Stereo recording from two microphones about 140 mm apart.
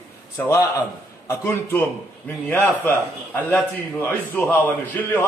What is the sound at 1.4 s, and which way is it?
A man's voice, 15° left (ahead or behind).